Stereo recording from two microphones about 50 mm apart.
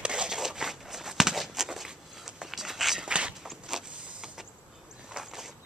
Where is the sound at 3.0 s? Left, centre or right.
Right.